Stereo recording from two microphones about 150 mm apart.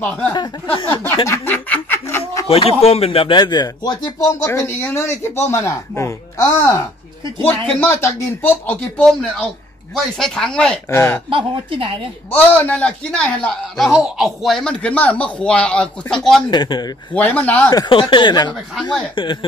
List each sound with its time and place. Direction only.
0.3 s speech: 30° left (ahead or behind)
1.2 s snicker: 15° left (ahead or behind)
2.4 s speech: 40° left (ahead or behind)
4.5 s a man's voice: 15° left (ahead or behind)
10.9 s a man's voice: 15° left (ahead or behind)
11.2 s a woman's voice: 35° right (ahead or behind)
12.3 s a man's voice: 10° left (ahead or behind)
16.4 s speech: 30° left (ahead or behind)
17.1 s a man's voice: 10° left (ahead or behind)
17.6 s speech: 30° left (ahead or behind)